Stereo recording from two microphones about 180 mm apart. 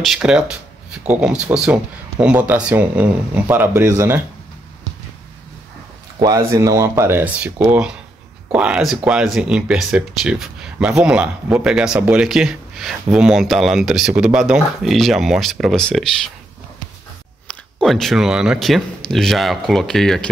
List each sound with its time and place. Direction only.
0.0 s speech: centre (ahead or behind)
6.1 s speech: 20° right (ahead or behind); by 16.1 s 5° left (ahead or behind)
17.5 s speech: 5° left (ahead or behind)